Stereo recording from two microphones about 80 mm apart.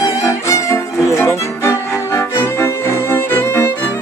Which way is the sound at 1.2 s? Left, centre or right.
Left.